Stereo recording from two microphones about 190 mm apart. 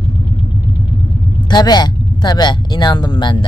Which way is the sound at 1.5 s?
20° left (ahead or behind).